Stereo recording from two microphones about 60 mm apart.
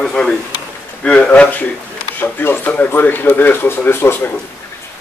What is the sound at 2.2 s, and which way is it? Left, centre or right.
A man's voice, left.